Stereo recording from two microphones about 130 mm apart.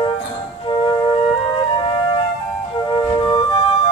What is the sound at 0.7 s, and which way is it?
Music, 40° left (ahead or behind).